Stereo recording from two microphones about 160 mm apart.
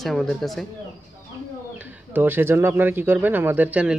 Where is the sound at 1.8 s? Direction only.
10° right (ahead or behind).